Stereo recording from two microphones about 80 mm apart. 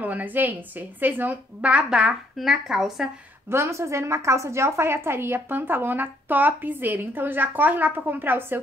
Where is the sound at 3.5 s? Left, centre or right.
Right.